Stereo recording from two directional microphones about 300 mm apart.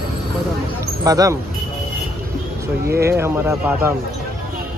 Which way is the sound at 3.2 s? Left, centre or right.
Centre.